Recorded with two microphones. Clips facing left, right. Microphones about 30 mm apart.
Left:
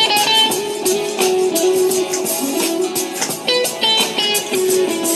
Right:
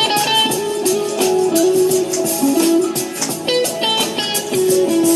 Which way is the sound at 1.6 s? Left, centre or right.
Left.